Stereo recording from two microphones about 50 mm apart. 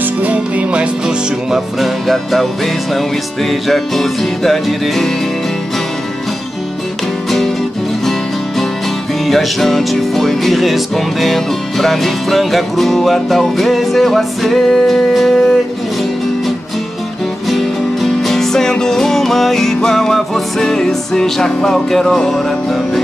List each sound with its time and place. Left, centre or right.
0.2 s music: right
1.0 s music: centre
7.2 s music: centre
9.2 s music: centre
17.5 s music: centre